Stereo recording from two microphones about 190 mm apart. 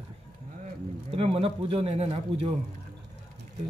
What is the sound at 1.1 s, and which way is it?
Speech, 30° right (ahead or behind).